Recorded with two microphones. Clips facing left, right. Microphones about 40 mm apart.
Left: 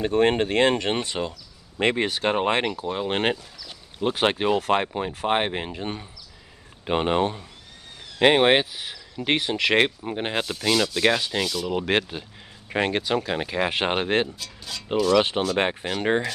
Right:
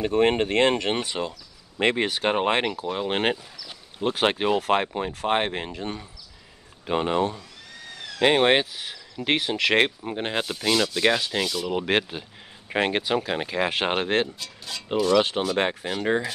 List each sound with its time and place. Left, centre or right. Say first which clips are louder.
0.0 s rub: left 1 dB; centre
6.9 s speech: left 1 dB; left
8.2 s speech: left 2 dB; centre
9.2 s rub: even; centre
15.1 s speech: even; centre